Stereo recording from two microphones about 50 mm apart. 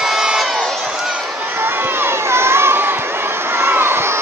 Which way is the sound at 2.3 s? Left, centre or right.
Right.